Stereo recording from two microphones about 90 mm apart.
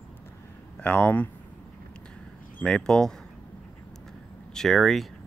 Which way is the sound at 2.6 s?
5° left (ahead or behind).